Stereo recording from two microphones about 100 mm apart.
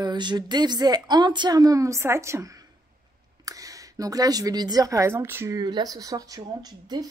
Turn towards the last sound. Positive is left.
turn(degrees=-40)  # may be behind; listen again after turning